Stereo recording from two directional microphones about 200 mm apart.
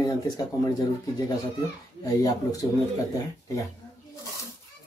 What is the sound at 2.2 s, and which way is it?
Speech, 15° left (ahead or behind).